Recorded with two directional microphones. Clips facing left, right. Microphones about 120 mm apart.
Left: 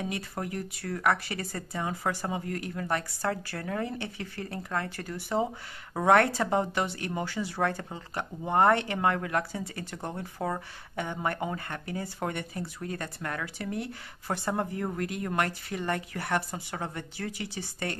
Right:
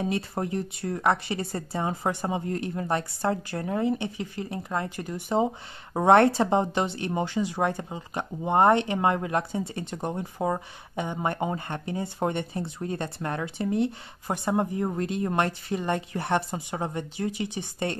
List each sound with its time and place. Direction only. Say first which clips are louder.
0.0 s a woman's voice: right 6 dB; 30° right (ahead or behind)